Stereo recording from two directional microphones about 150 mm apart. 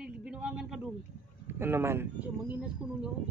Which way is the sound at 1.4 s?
15° right (ahead or behind).